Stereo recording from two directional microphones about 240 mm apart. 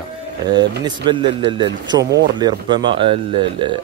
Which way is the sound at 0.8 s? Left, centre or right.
Centre.